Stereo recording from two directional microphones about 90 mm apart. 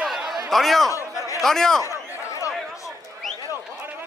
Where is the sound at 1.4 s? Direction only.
5° left (ahead or behind).